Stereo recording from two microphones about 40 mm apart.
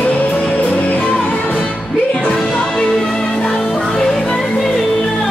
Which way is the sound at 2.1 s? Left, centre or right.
Left.